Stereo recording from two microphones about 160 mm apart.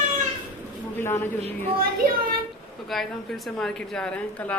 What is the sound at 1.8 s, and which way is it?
Speech, 65° right (ahead or behind).